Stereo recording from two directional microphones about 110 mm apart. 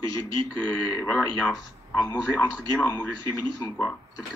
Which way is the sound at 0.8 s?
15° left (ahead or behind).